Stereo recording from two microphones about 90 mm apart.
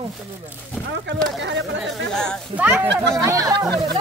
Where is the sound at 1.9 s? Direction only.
5° left (ahead or behind).